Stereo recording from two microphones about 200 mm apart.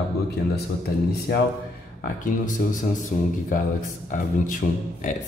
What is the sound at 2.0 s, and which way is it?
Speech, 40° left (ahead or behind).